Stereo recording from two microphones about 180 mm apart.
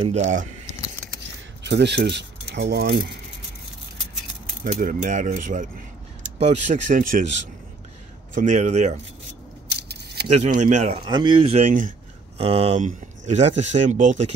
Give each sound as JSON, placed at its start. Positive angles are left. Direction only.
{"t": 0.0, "sound": "speech", "side_deg": -40}
{"t": 1.7, "sound": "speech", "side_deg": -70}
{"t": 4.6, "sound": "speech", "side_deg": -45}
{"t": 8.4, "sound": "speech", "side_deg": -40}
{"t": 10.2, "sound": "speech", "side_deg": -40}
{"t": 11.1, "sound": "speech", "side_deg": -25}
{"t": 12.4, "sound": "speech", "side_deg": -35}